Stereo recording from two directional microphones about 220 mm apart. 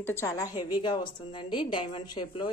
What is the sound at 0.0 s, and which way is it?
A woman's voice, 10° left (ahead or behind).